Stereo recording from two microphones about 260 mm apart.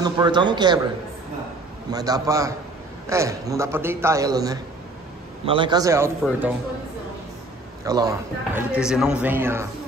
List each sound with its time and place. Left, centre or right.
0.0 s a man's voice: centre
1.9 s a man's voice: centre
7.8 s a man's voice: centre